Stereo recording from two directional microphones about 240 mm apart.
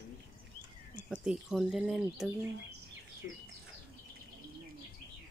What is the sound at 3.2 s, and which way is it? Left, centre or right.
Speech, left.